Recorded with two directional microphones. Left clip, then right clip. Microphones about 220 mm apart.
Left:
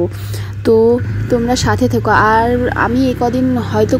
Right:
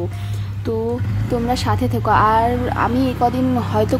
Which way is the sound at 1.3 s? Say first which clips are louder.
Left 5 dB; 10° left (ahead or behind).